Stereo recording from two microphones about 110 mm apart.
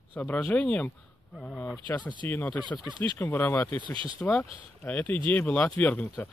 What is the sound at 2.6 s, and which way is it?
Speech, 40° left (ahead or behind).